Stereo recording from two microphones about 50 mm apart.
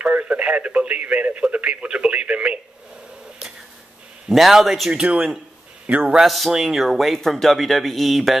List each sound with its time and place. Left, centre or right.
0.0 s speech: right
1.5 s radio: right
4.3 s speech: centre
4.9 s speech: centre
5.9 s speech: right
6.2 s speech: centre